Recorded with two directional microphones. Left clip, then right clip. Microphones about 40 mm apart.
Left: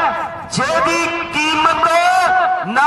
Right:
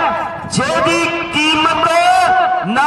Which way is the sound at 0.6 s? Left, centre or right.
Left.